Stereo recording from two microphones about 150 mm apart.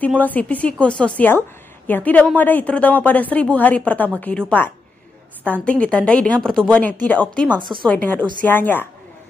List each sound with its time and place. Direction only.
0.0 s speech: 10° left (ahead or behind)
5.7 s speech: 10° left (ahead or behind)
7.5 s speech: 30° right (ahead or behind)
7.8 s speech: 10° left (ahead or behind)